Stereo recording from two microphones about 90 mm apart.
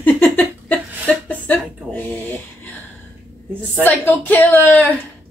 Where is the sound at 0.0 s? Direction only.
20° left (ahead or behind).